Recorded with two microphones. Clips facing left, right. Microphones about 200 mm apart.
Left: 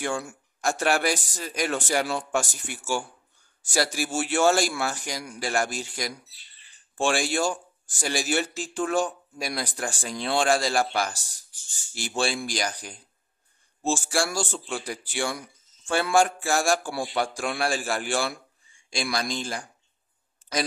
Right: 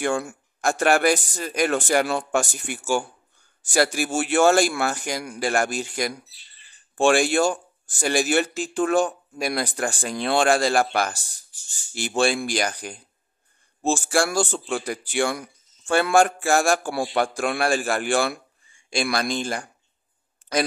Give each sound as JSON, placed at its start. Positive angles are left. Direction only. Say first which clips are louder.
{"t": 0.0, "sound": "speech", "louder": "right 5 dB", "side_deg": -55}